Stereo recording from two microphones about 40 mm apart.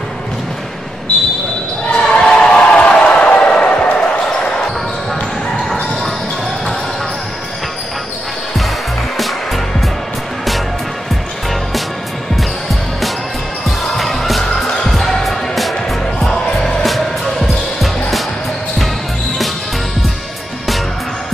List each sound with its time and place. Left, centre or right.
1.1 s basketball bounce: left
2.5 s a sound: left
4.3 s basketball bounce: left
9.1 s music: centre
13.7 s music: centre